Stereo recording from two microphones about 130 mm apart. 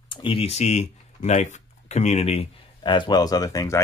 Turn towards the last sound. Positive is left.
turn(degrees=25)  # may be behind; listen again after turning